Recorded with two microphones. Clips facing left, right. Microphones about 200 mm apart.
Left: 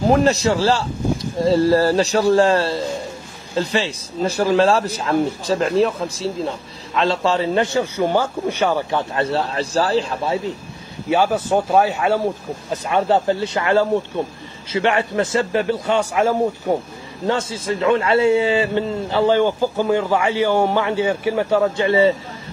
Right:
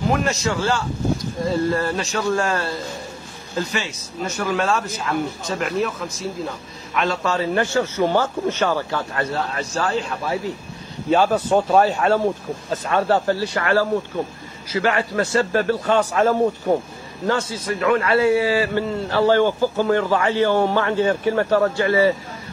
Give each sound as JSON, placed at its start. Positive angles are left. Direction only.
{"t": 0.1, "sound": "a man's voice", "side_deg": 35}
{"t": 11.1, "sound": "a man's voice", "side_deg": 10}
{"t": 12.8, "sound": "a man's voice", "side_deg": 20}
{"t": 17.3, "sound": "a man's voice", "side_deg": 25}